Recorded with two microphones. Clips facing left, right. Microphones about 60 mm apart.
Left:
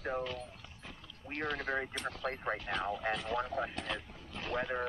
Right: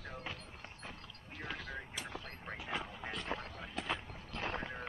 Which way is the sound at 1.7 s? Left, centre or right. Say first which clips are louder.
Left 10 dB; left.